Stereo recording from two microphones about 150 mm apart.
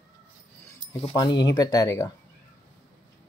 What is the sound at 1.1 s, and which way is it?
Speech, 25° left (ahead or behind).